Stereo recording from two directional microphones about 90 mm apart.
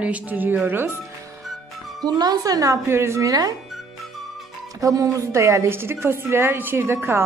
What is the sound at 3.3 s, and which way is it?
Speech, 45° right (ahead or behind).